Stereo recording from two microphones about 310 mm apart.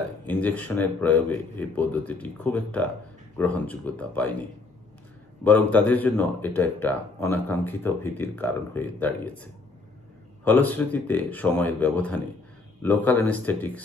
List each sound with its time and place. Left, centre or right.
0.3 s speech: centre